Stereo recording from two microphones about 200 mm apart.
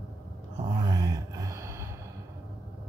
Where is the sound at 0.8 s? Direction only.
20° right (ahead or behind).